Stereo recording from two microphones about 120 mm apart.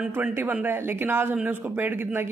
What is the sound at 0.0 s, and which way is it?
Speech, 15° right (ahead or behind).